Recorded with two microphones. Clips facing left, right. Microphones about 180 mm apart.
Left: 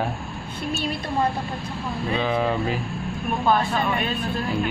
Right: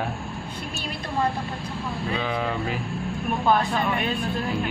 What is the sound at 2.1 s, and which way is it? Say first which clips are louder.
Speech: left 5 dB; 25° left (ahead or behind).